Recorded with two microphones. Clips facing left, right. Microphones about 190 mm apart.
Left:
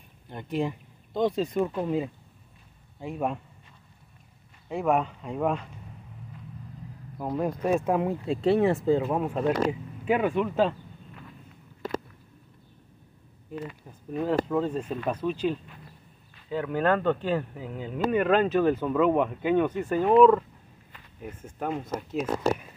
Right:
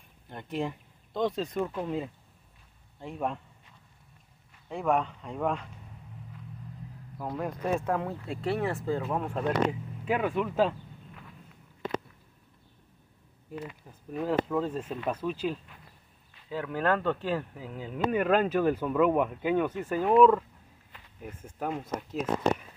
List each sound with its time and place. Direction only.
0.3 s speech: 5° left (ahead or behind)
4.6 s speech: 5° left (ahead or behind)
7.2 s speech: 15° left (ahead or behind); by 10.8 s 5° right (ahead or behind)
13.5 s speech: 5° right (ahead or behind)
20.9 s a sound: centre (ahead or behind)
21.5 s speech: 5° right (ahead or behind)